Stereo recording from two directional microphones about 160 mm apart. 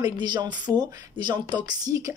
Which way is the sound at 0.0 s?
30° right (ahead or behind).